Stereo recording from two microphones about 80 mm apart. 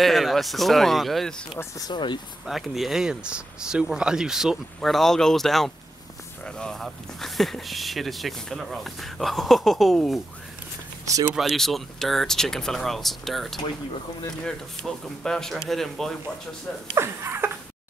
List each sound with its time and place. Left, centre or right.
0.0 s speech: centre
11.3 s speech: centre
16.9 s speech: right